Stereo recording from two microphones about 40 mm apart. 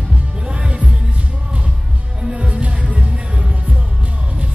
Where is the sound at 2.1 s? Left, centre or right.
Right.